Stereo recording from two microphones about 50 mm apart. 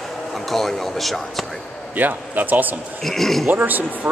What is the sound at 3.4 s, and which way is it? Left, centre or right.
Speech, right.